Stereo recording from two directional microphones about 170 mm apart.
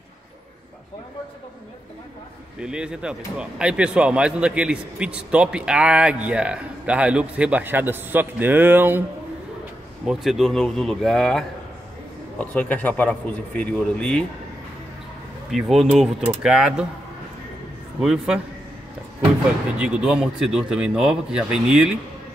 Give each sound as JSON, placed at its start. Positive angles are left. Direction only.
{"t": 2.6, "sound": "speech", "side_deg": -5}
{"t": 10.0, "sound": "a man's voice", "side_deg": 0}
{"t": 15.5, "sound": "speech", "side_deg": 0}
{"t": 18.0, "sound": "speech", "side_deg": -5}
{"t": 19.8, "sound": "speech", "side_deg": -5}